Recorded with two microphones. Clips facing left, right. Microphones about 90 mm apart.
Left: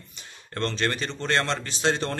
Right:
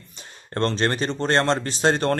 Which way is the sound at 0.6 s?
40° right (ahead or behind).